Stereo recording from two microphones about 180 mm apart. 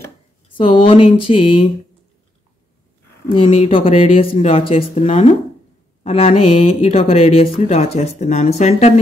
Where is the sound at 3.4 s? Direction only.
30° left (ahead or behind).